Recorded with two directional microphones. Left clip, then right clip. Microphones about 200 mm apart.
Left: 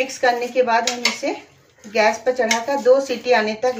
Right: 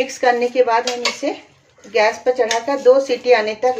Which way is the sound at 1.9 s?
45° right (ahead or behind).